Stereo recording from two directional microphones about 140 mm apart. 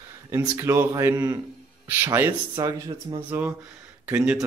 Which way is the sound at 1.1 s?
30° right (ahead or behind).